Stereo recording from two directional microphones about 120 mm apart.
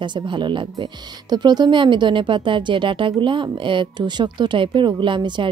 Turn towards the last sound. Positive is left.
turn(degrees=-40)  # may be behind; listen again after turning